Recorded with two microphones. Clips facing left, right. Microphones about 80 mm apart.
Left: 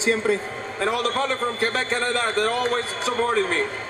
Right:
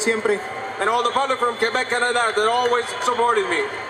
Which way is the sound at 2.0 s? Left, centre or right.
Right.